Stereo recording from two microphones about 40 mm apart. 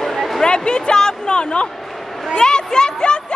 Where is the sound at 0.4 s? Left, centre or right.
Left.